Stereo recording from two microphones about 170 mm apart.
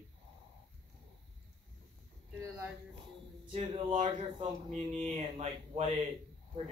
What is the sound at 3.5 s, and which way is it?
Speech, 35° right (ahead or behind).